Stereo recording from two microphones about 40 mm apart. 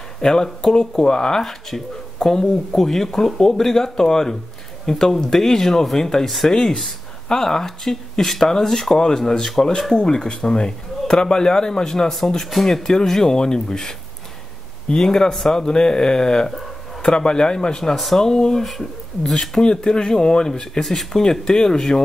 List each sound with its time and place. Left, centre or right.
0.2 s speech: centre
1.4 s speech: centre
12.6 s speech: centre
15.0 s speech: centre
17.9 s speech: centre
18.2 s speech: centre
20.8 s speech: centre